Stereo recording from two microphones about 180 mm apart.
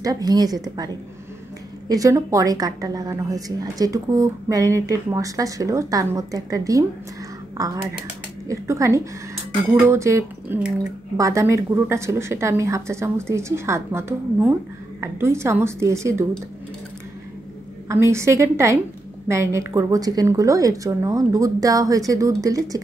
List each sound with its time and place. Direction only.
0.0 s a woman's voice: 20° right (ahead or behind)
1.9 s a woman's voice: 20° right (ahead or behind)
17.8 s a woman's voice: 15° right (ahead or behind)